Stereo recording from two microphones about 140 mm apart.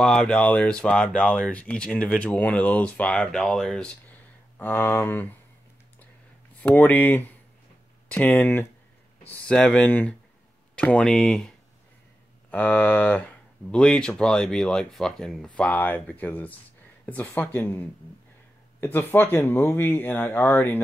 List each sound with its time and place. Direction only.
0.0 s speech: 5° left (ahead or behind)
6.6 s speech: 15° left (ahead or behind)